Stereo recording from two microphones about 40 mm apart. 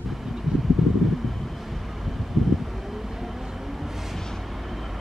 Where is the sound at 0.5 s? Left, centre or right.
Centre.